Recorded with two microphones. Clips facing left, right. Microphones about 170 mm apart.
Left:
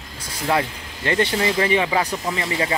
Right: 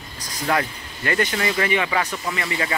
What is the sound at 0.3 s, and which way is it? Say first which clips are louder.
Speech: left 1 dB; 25° left (ahead or behind).